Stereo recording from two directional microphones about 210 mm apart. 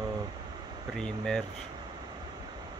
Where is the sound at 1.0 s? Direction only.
5° left (ahead or behind).